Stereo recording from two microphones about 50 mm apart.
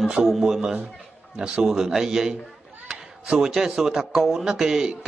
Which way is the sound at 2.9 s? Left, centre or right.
Centre.